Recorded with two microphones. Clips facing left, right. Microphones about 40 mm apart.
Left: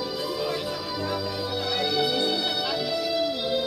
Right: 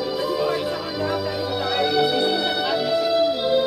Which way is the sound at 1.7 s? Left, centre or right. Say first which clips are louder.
Right 6 dB; centre.